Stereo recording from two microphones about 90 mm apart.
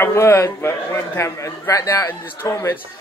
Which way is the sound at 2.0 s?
25° left (ahead or behind).